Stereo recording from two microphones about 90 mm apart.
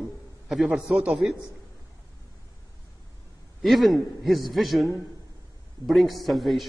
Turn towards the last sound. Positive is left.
turn(degrees=0)  # may be behind; listen again after turning